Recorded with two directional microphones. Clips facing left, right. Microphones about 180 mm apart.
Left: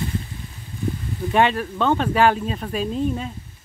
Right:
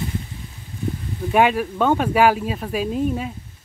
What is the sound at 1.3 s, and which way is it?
Speech, 10° right (ahead or behind).